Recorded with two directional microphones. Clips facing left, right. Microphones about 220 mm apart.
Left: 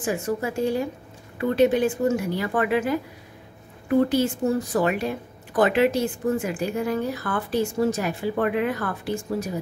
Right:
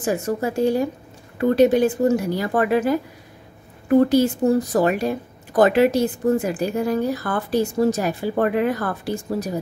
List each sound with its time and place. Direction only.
0.0 s speech: 40° right (ahead or behind)
4.1 s speech: 40° right (ahead or behind)